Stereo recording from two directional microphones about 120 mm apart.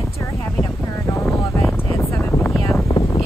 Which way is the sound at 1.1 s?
20° left (ahead or behind).